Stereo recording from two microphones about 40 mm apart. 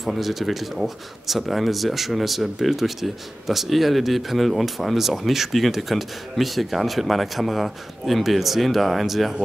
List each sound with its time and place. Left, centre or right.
0.0 s speech: centre